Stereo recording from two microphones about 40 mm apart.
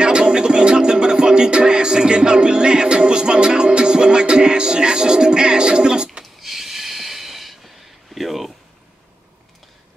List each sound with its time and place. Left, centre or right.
0.0 s music: right
6.4 s snort: centre
8.1 s a sound: centre